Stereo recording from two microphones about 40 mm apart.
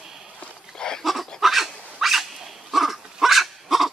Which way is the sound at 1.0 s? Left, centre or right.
Centre.